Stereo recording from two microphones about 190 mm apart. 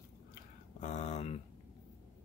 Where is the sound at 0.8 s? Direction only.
40° left (ahead or behind).